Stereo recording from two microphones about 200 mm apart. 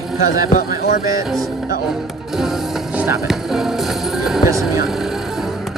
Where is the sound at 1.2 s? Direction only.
Centre (ahead or behind).